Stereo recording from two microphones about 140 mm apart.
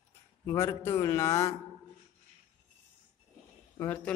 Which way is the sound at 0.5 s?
20° left (ahead or behind).